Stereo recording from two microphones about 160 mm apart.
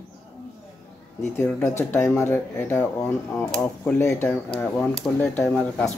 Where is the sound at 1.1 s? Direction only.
15° left (ahead or behind).